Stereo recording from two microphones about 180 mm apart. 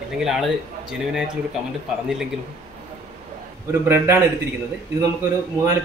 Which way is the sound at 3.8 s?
15° right (ahead or behind).